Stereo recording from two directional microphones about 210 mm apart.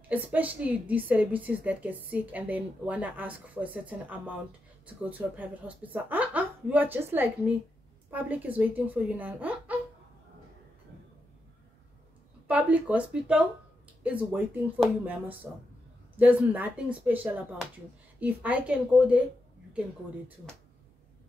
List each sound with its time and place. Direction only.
0.1 s a woman's voice: 10° right (ahead or behind)
5.2 s a woman's voice: 10° right (ahead or behind)
12.4 s a woman's voice: 5° right (ahead or behind)